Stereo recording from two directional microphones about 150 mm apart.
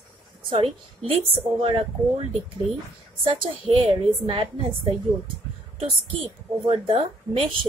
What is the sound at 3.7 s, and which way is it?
Speech, 35° right (ahead or behind).